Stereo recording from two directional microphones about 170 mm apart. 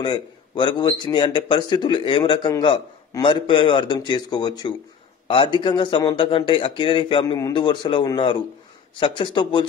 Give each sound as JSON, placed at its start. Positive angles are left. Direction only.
{"t": 0.0, "sound": "a man's voice", "side_deg": 30}